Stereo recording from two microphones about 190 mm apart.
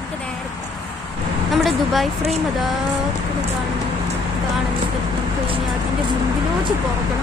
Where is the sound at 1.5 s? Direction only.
Centre (ahead or behind).